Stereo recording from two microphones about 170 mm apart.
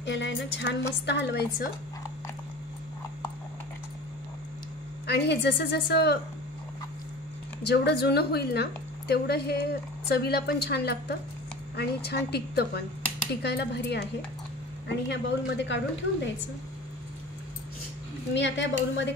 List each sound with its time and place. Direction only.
0.0 s a woman's voice: 90° left
5.0 s a woman's voice: 75° left (ahead or behind)
7.6 s a woman's voice: 70° left (ahead or behind)
14.9 s a woman's voice: 90° left
18.3 s a woman's voice: 90° left